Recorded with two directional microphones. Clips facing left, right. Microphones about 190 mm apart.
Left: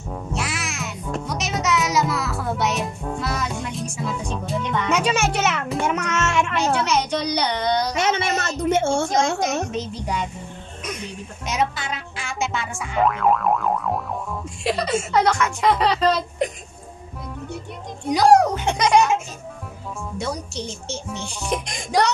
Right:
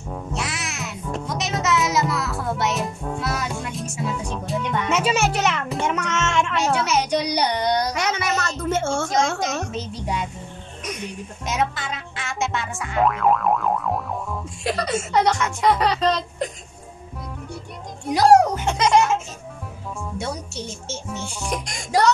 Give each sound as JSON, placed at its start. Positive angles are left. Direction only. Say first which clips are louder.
{"t": 0.1, "sound": "music", "louder": "left 1 dB", "side_deg": 0}
{"t": 6.6, "sound": "a child's voice", "louder": "even", "side_deg": -5}
{"t": 7.9, "sound": "a sound", "louder": "left 2 dB", "side_deg": 25}
{"t": 9.7, "sound": "a child's voice", "louder": "left 1 dB", "side_deg": 0}
{"t": 11.4, "sound": "speech", "louder": "left 1 dB", "side_deg": 0}
{"t": 18.0, "sound": "speech", "louder": "even", "side_deg": -5}
{"t": 18.7, "sound": "music", "louder": "left 1 dB", "side_deg": 15}
{"t": 20.2, "sound": "speech", "louder": "left 3 dB", "side_deg": -5}
{"t": 21.5, "sound": "speech", "louder": "left 4 dB", "side_deg": 20}